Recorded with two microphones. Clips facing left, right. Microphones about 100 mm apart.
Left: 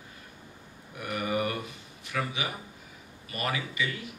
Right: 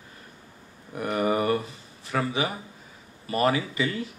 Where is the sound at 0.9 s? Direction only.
35° right (ahead or behind).